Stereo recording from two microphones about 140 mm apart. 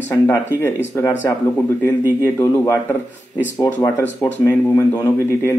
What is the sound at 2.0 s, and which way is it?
Speech, 15° right (ahead or behind).